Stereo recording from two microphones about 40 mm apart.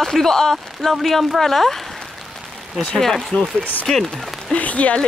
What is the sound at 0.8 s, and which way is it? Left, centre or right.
Speech, centre.